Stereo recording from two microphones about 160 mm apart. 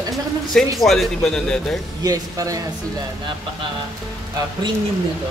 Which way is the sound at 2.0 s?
20° right (ahead or behind).